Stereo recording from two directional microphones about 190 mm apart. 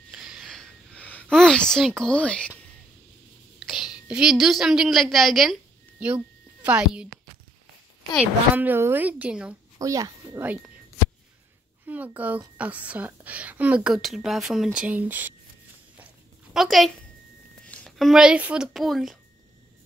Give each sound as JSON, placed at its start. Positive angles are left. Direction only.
{"t": 0.1, "sound": "a sound", "side_deg": -5}
{"t": 3.5, "sound": "a woman's voice", "side_deg": 0}
{"t": 8.5, "sound": "a woman's voice", "side_deg": -10}
{"t": 9.8, "sound": "a woman's voice", "side_deg": -20}
{"t": 11.8, "sound": "a woman's voice", "side_deg": -10}
{"t": 16.5, "sound": "speech", "side_deg": 0}